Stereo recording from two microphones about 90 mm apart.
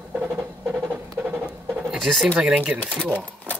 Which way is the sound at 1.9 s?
Centre (ahead or behind).